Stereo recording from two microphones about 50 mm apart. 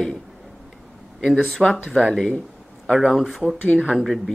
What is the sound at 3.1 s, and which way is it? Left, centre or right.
Speech, centre.